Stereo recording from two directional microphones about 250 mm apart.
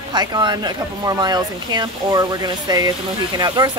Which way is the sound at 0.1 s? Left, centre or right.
Centre.